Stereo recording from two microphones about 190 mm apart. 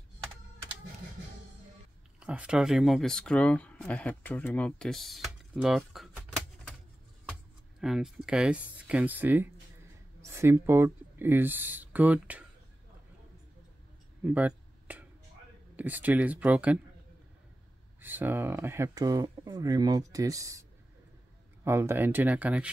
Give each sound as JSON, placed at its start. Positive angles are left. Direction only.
{"t": 2.1, "sound": "speech", "side_deg": -5}
{"t": 7.8, "sound": "speech", "side_deg": 0}
{"t": 14.2, "sound": "a sound", "side_deg": -10}
{"t": 15.7, "sound": "speech", "side_deg": -10}
{"t": 18.0, "sound": "speech", "side_deg": -10}
{"t": 21.6, "sound": "speech", "side_deg": -10}